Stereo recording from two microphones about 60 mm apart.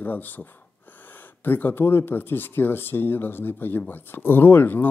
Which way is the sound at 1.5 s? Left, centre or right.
Left.